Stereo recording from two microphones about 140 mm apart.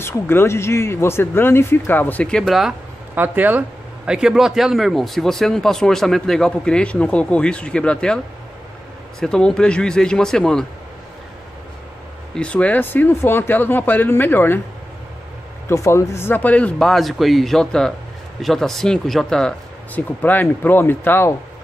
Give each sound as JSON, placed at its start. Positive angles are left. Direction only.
{"t": 0.0, "sound": "speech", "side_deg": 15}
{"t": 3.2, "sound": "a man's voice", "side_deg": -15}
{"t": 9.2, "sound": "a man's voice", "side_deg": 5}
{"t": 12.4, "sound": "speech", "side_deg": 10}
{"t": 15.7, "sound": "a man's voice", "side_deg": 20}